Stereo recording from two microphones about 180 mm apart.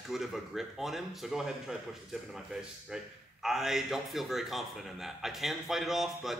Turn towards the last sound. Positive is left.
turn(degrees=0)  # may be behind; listen again after turning